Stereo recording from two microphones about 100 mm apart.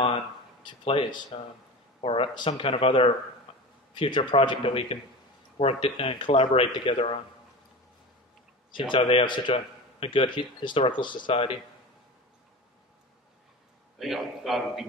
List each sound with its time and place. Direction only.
0.7 s a man's voice: 55° left (ahead or behind)
2.0 s a sound: 75° left (ahead or behind)
2.3 s a man's voice: 55° left (ahead or behind)
5.6 s speech: 80° left
8.7 s a man's voice: 55° left (ahead or behind)
13.9 s a man's voice: centre (ahead or behind)